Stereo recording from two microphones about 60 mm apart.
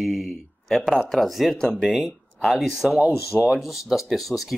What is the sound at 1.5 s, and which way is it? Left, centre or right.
Speech, centre.